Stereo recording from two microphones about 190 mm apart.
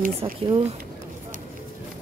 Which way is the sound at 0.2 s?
20° right (ahead or behind).